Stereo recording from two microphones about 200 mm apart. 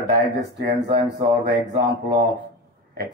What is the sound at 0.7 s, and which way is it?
Speech, 25° right (ahead or behind).